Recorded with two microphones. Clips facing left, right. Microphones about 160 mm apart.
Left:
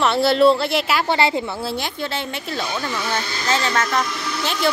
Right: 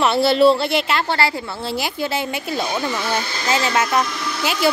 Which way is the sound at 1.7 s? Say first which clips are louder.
Right 3 dB; 5° right (ahead or behind).